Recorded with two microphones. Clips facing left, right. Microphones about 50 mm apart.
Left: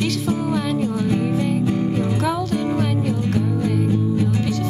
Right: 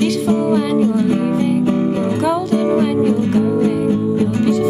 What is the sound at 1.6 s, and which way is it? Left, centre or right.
Music, right.